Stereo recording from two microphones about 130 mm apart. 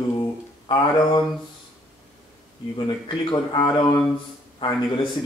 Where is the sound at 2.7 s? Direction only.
40° left (ahead or behind).